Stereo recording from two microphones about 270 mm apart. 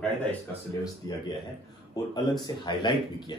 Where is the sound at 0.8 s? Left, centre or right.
Centre.